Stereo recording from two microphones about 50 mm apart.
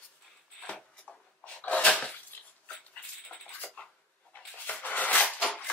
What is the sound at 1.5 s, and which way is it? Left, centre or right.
Sneeze, left.